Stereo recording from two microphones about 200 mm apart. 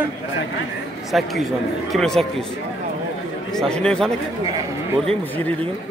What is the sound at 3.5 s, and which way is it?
A man's voice, 5° left (ahead or behind).